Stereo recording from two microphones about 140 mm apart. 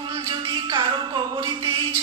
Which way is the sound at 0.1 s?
30° right (ahead or behind).